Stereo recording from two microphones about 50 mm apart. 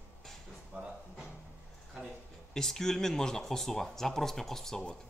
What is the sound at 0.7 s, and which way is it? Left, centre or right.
Speech, right.